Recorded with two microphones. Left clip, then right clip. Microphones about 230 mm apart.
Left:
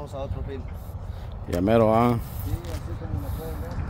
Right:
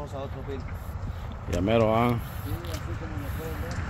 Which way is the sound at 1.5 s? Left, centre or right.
Left.